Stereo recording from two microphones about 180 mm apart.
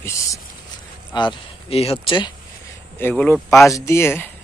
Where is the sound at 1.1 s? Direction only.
30° left (ahead or behind).